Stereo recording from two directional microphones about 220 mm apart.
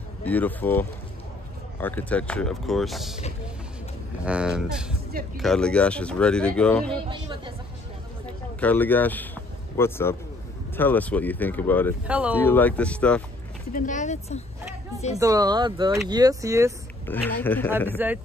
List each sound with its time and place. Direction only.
0.2 s speech: 5° left (ahead or behind)
4.2 s speech: 5° right (ahead or behind)
7.1 s speech: 20° right (ahead or behind)
8.3 s a sound: 5° left (ahead or behind)
10.8 s speech: 10° left (ahead or behind)
12.1 s speech: 5° right (ahead or behind)
12.4 s speech: 10° left (ahead or behind)
13.7 s speech: 35° left (ahead or behind)
15.1 s speech: 15° right (ahead or behind)
17.1 s speech: 10° left (ahead or behind)
17.9 s speech: 10° right (ahead or behind)